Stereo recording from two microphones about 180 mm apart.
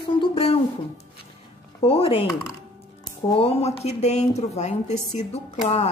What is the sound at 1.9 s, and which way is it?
Speech, 30° left (ahead or behind).